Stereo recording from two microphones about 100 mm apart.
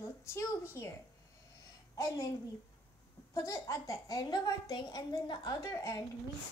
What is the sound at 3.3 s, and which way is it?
Speech, 30° left (ahead or behind).